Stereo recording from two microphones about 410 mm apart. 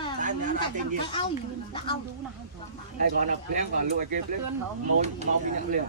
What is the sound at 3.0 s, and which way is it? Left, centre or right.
Speech, centre.